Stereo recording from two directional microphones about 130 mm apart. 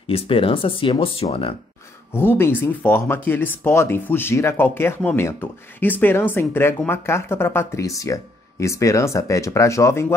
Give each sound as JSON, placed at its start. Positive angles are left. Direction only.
{"t": 0.0, "sound": "speech", "side_deg": 45}
{"t": 2.1, "sound": "speech", "side_deg": 20}